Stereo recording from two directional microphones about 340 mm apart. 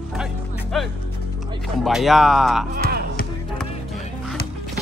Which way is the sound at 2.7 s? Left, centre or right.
Right.